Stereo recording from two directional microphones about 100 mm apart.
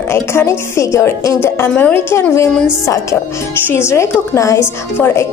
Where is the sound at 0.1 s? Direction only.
25° left (ahead or behind).